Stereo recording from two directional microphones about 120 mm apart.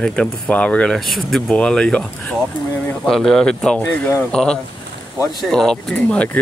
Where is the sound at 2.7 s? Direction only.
15° left (ahead or behind).